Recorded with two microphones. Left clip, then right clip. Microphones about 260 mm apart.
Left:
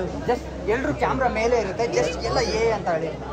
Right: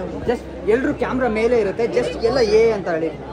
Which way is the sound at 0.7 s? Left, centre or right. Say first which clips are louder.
Right 4 dB; right.